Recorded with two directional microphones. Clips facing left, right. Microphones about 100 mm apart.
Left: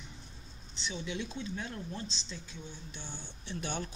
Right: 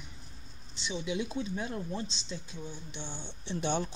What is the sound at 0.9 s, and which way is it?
Speech, 30° right (ahead or behind).